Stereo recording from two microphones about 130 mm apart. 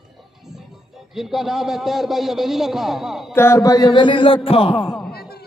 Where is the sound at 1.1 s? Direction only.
5° right (ahead or behind).